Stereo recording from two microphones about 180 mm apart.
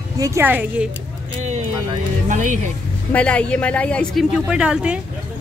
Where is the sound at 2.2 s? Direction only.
45° right (ahead or behind).